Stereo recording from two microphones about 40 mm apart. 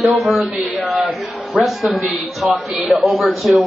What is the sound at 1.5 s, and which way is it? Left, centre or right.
Speech, right.